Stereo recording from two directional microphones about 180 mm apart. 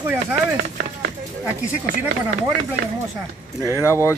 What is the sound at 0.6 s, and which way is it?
Speech, 55° right (ahead or behind).